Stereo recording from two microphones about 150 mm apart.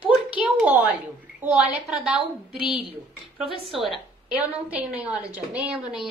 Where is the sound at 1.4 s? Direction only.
10° right (ahead or behind).